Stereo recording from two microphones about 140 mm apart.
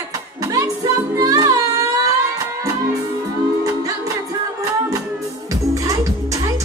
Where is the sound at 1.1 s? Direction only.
25° right (ahead or behind).